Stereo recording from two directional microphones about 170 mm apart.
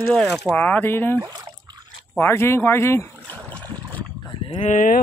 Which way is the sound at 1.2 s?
20° right (ahead or behind).